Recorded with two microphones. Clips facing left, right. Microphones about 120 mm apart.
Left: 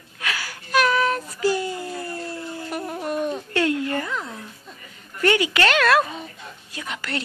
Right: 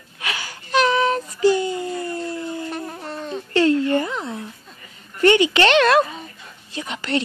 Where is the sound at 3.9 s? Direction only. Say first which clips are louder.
Right 5 dB; 30° right (ahead or behind).